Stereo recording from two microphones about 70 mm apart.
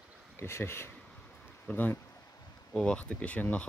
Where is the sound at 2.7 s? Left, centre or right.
Centre.